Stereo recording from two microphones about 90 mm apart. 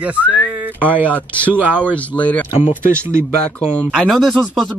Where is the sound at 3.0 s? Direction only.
30° right (ahead or behind).